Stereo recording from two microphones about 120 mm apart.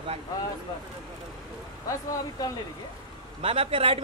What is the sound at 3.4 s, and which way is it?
Speech, 55° right (ahead or behind).